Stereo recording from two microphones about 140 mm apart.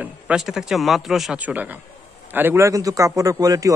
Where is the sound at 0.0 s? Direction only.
5° right (ahead or behind).